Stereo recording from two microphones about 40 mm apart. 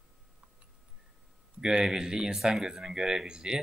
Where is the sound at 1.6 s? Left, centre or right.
Centre.